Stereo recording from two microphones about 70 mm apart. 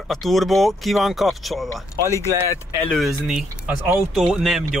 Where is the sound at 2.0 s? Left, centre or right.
Left.